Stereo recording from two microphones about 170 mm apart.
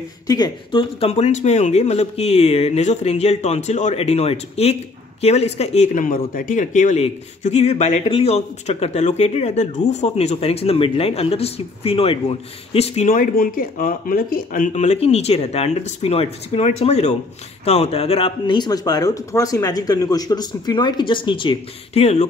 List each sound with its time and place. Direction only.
0.3 s speech: 25° left (ahead or behind)
13.1 s speech: 55° left (ahead or behind); by 22.3 s 40° left (ahead or behind)